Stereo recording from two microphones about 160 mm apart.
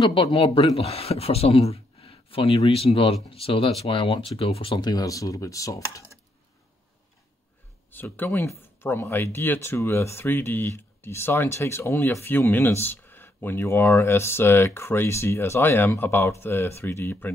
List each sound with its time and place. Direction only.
0.1 s speech: 35° left (ahead or behind); by 6.0 s 20° left (ahead or behind)
7.9 s speech: 10° left (ahead or behind)